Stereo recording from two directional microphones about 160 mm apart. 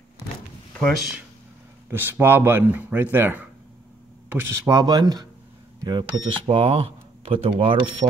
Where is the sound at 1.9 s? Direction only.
15° right (ahead or behind).